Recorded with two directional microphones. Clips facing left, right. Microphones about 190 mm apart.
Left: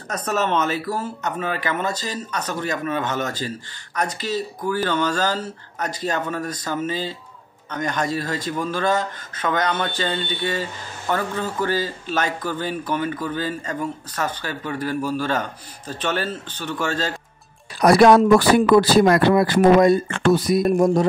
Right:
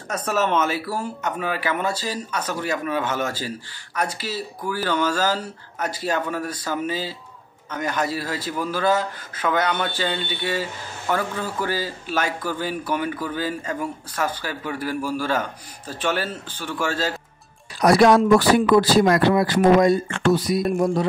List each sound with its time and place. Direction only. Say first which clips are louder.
0.1 s a man's voice: even; 10° right (ahead or behind)
17.7 s speech: left 2 dB; 55° left (ahead or behind)